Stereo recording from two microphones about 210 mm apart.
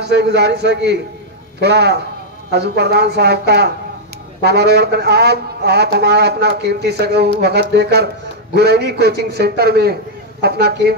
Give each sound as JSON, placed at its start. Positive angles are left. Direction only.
{"t": 0.1, "sound": "speech", "side_deg": -55}